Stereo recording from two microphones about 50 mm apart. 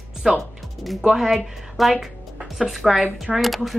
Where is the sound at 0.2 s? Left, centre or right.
Centre.